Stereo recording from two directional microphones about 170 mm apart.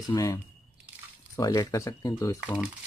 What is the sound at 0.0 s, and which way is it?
Speech, 20° left (ahead or behind).